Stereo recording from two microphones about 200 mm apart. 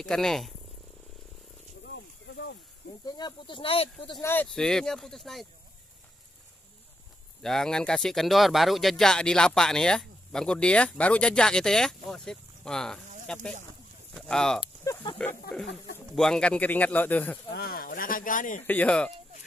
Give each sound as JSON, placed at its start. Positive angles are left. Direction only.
{"t": 0.0, "sound": "speech", "side_deg": 5}
{"t": 1.9, "sound": "a sound", "side_deg": 60}
{"t": 3.1, "sound": "speech", "side_deg": 20}
{"t": 4.3, "sound": "speech", "side_deg": 5}
{"t": 7.4, "sound": "speech", "side_deg": 5}
{"t": 14.6, "sound": "a sound", "side_deg": 25}
{"t": 15.1, "sound": "speech", "side_deg": 5}
{"t": 17.5, "sound": "speech", "side_deg": 50}
{"t": 18.6, "sound": "speech", "side_deg": 10}